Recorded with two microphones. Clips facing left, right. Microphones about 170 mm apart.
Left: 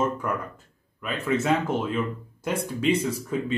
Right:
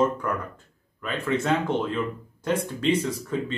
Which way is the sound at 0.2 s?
5° left (ahead or behind).